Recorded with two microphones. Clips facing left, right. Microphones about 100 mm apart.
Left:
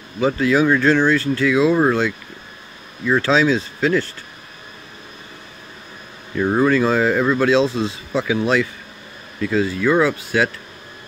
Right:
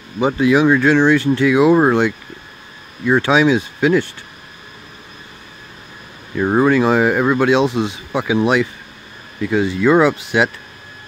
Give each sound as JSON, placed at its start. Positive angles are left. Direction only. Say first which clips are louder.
{"t": 0.2, "sound": "speech", "louder": "right 3 dB", "side_deg": -20}
{"t": 6.3, "sound": "speech", "louder": "right 2 dB", "side_deg": -20}